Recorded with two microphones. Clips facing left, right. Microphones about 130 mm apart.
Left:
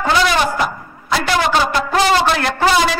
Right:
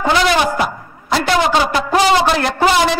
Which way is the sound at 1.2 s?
20° right (ahead or behind).